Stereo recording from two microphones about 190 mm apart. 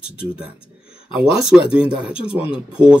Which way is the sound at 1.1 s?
5° right (ahead or behind).